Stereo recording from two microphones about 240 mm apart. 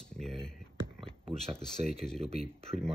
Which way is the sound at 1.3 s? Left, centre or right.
Right.